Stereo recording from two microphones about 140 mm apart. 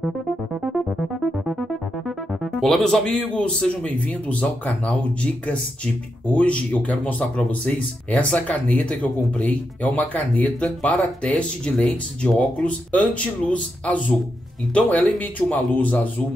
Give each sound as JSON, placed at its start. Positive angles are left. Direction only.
{"t": 0.6, "sound": "music", "side_deg": 0}
{"t": 6.2, "sound": "speech", "side_deg": 10}